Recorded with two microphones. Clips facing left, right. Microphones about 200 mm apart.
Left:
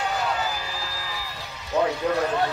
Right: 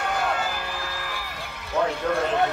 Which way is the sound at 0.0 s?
55° right (ahead or behind).